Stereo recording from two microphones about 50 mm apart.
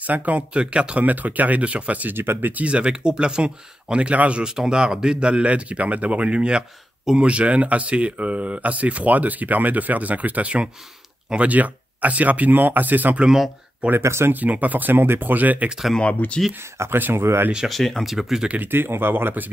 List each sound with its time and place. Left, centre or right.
0.0 s speech: right
1.0 s speech: right
2.1 s speech: right
2.5 s speech: right
13.2 s speech: centre
14.0 s speech: right
14.3 s speech: right
16.0 s speech: left
16.9 s speech: right
17.6 s speech: centre
18.1 s speech: centre
18.7 s speech: right